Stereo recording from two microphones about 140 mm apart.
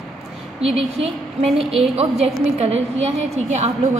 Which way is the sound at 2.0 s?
50° right (ahead or behind).